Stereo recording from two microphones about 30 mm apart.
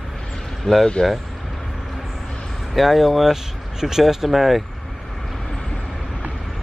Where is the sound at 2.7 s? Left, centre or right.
Centre.